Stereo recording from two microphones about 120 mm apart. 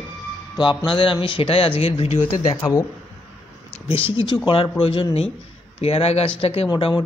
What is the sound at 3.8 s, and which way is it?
Speech, 50° left (ahead or behind).